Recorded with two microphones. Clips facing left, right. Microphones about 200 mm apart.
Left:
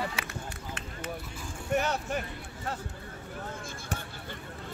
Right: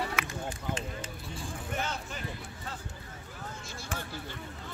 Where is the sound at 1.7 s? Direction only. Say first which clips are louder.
Left 9 dB; 65° left (ahead or behind).